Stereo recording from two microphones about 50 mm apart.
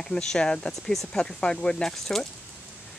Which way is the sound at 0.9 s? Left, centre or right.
Centre.